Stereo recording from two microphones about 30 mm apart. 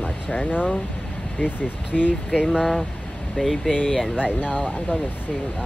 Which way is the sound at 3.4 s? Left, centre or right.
Left.